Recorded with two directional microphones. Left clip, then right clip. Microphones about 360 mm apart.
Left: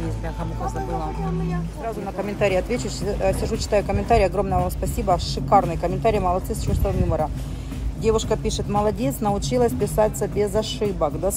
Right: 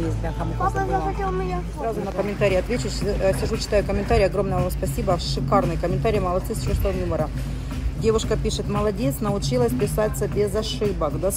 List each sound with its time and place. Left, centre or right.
2.1 s speech: centre
8.0 s speech: centre